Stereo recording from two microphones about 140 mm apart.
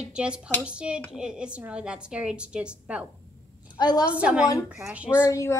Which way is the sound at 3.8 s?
30° left (ahead or behind).